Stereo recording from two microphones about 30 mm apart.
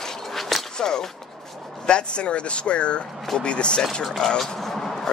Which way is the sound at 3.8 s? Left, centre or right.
Centre.